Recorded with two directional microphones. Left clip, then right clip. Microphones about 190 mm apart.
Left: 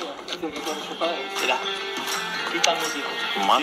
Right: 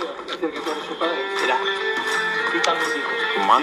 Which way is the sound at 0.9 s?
25° right (ahead or behind).